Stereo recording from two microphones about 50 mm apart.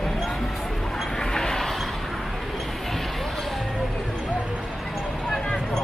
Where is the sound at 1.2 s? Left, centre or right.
Centre.